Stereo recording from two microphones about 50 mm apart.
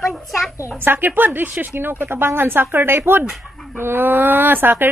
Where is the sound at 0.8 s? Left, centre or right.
Right.